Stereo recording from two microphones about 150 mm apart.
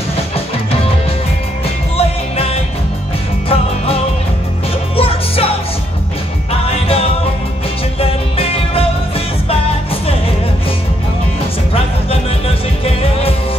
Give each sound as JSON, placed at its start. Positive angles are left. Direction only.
{"t": 2.0, "sound": "music", "side_deg": 40}
{"t": 6.7, "sound": "music", "side_deg": 40}
{"t": 11.7, "sound": "music", "side_deg": 40}